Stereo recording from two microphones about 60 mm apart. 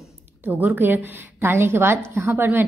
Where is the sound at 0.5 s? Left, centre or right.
Right.